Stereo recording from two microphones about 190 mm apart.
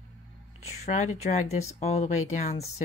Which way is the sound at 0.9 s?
40° left (ahead or behind).